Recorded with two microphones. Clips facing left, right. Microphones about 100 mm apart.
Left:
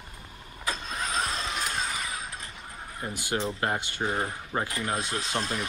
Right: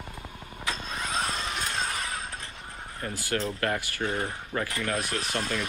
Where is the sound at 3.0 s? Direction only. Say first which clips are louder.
Even; 20° left (ahead or behind).